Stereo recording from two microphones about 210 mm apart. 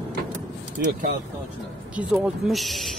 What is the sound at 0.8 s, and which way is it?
Speech, 50° right (ahead or behind).